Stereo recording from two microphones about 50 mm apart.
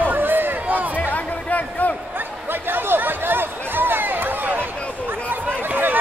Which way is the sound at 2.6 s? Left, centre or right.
Right.